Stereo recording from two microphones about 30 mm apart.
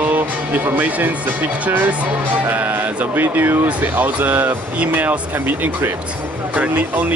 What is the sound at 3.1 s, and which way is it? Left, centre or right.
Speech, right.